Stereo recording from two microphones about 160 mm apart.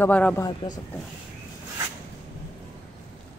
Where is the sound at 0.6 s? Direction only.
30° left (ahead or behind).